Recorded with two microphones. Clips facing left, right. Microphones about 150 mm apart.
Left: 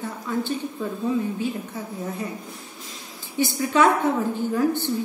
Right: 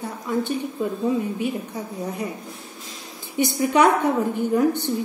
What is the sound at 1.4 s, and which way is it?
Speech, 15° right (ahead or behind).